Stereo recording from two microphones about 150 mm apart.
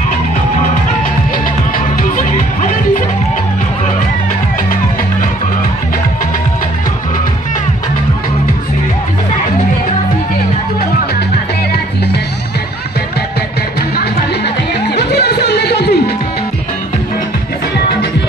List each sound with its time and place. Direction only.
15.1 s music: 90° left